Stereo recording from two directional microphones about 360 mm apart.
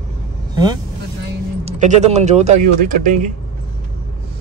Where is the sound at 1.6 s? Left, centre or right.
Centre.